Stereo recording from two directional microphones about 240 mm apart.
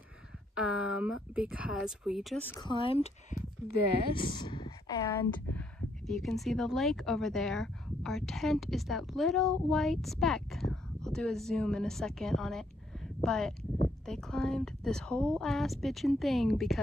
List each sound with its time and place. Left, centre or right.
0.6 s speech: centre
2.6 s speech: left; by 16.8 s centre